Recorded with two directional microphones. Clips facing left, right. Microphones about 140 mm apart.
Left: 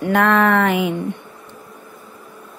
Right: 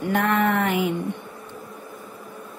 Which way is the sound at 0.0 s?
90° left.